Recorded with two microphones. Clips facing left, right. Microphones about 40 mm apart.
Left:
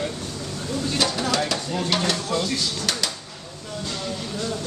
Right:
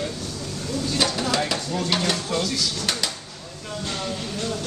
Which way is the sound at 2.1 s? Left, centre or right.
Centre.